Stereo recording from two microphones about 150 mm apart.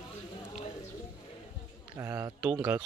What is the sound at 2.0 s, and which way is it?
Speech, 20° right (ahead or behind).